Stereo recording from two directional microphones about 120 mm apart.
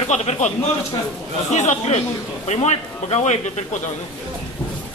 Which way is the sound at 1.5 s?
70° left (ahead or behind).